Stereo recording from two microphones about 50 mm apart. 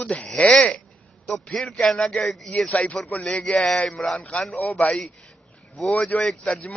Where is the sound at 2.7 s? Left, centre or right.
Left.